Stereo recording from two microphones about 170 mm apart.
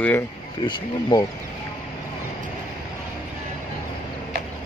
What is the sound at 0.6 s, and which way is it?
Speech, 25° left (ahead or behind).